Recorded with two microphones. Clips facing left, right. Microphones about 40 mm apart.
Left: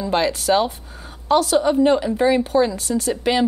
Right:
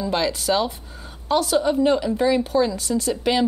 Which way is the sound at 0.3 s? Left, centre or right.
Left.